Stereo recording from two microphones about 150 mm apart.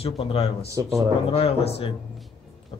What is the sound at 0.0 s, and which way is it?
Speech, 40° left (ahead or behind).